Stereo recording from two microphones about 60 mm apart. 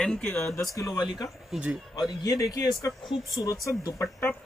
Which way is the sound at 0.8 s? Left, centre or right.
Left.